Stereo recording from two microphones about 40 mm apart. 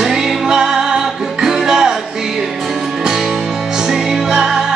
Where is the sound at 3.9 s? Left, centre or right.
Centre.